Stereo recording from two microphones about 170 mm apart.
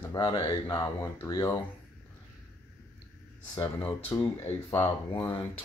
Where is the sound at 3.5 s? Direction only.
10° left (ahead or behind).